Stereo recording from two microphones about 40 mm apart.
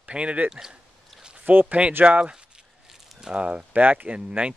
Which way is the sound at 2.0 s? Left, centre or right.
Right.